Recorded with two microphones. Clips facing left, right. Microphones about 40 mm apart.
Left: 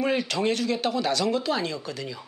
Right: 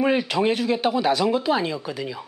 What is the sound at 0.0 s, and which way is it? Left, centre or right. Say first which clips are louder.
Speech: right 4 dB; centre.